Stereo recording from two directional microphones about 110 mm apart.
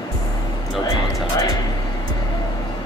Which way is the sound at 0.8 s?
35° left (ahead or behind).